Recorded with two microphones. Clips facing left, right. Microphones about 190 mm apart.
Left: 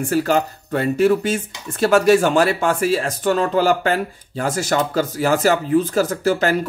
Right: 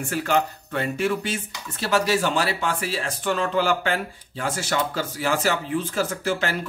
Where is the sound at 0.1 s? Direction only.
40° left (ahead or behind).